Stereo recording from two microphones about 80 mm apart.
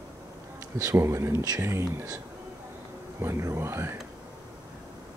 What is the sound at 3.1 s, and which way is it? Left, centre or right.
Speech, right.